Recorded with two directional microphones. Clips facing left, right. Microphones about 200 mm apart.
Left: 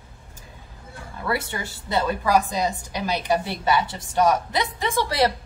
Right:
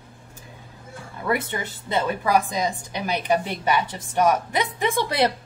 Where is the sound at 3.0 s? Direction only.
15° right (ahead or behind).